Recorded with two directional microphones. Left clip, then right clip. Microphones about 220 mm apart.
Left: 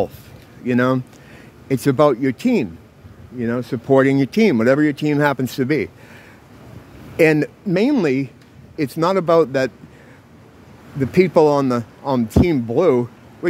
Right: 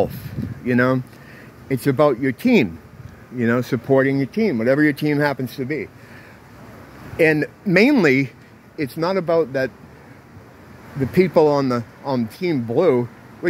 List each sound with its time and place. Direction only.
0.7 s speech: 10° left (ahead or behind)
2.4 s speech: 5° right (ahead or behind)
3.9 s speech: 20° left (ahead or behind)
4.6 s speech: 5° left (ahead or behind)
5.5 s speech: 30° left (ahead or behind)
7.2 s speech: 20° left (ahead or behind)
7.6 s speech: 5° left (ahead or behind)
8.7 s speech: 20° left (ahead or behind)
11.0 s speech: 15° left (ahead or behind)